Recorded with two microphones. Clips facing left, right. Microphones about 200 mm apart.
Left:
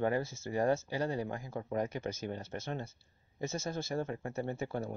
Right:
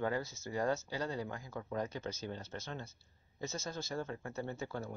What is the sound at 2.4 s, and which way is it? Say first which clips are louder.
Speech: left 5 dB; 50° left (ahead or behind).